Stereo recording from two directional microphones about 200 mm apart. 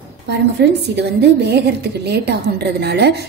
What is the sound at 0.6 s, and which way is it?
A woman's voice, 55° right (ahead or behind).